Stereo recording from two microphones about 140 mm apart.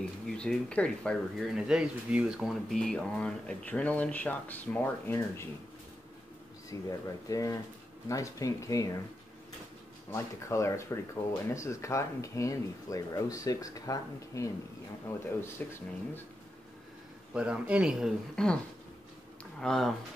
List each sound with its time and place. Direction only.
0.3 s speech: 5° left (ahead or behind)
6.7 s speech: 25° left (ahead or behind)
10.1 s speech: 20° left (ahead or behind)
15.1 s speech: 15° left (ahead or behind)
17.3 s speech: 5° right (ahead or behind)
18.3 s speech: 5° left (ahead or behind)
19.6 s speech: 5° left (ahead or behind)